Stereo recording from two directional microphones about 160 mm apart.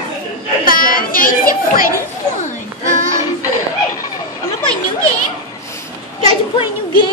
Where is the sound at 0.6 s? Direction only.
60° left (ahead or behind).